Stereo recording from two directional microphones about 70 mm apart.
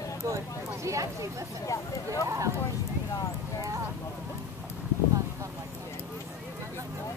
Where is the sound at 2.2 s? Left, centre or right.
Right.